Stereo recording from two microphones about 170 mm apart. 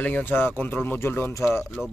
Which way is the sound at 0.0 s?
10° left (ahead or behind).